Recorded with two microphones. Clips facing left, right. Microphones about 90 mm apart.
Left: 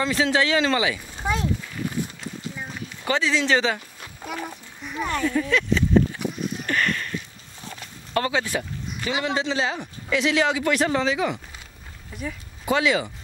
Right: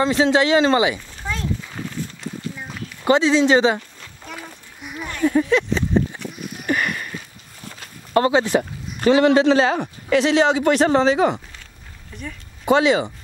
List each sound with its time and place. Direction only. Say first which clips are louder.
0.0 s speech: right 5 dB; 25° right (ahead or behind)
1.1 s speech: left 2 dB; 15° left (ahead or behind)
2.0 s walk: left 1 dB; 15° left (ahead or behind)
3.0 s speech: right 8 dB; 20° right (ahead or behind)
4.8 s a sound: right 1 dB; 10° right (ahead or behind)
5.2 s speech: right 8 dB; 20° right (ahead or behind)
6.6 s a sound: right 3 dB; 10° right (ahead or behind)
8.1 s speech: right 7 dB; 30° right (ahead or behind)
9.0 s speech: right 12 dB; 55° right (ahead or behind)
10.3 s speech: right 5 dB; 30° right (ahead or behind)
12.1 s speech: left 2 dB; 5° left (ahead or behind)
12.6 s speech: right 5 dB; 25° right (ahead or behind)